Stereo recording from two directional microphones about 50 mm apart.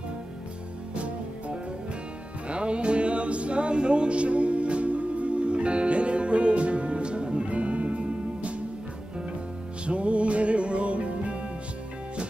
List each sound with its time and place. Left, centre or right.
2.4 s music: right
9.8 s music: right